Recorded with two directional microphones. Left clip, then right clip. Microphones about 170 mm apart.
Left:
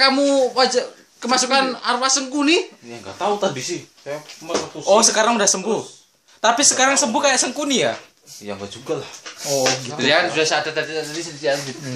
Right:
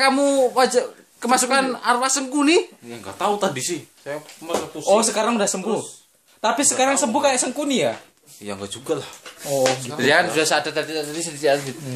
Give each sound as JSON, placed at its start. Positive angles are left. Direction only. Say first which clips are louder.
{"t": 0.0, "sound": "a man's voice", "louder": "left 1 dB", "side_deg": -30}
{"t": 2.9, "sound": "speech", "louder": "left 2 dB", "side_deg": -15}
{"t": 4.8, "sound": "speech", "louder": "left 4 dB", "side_deg": -5}
{"t": 9.9, "sound": "a man's voice", "louder": "even", "side_deg": -40}
{"t": 10.4, "sound": "speech", "louder": "left 1 dB", "side_deg": -60}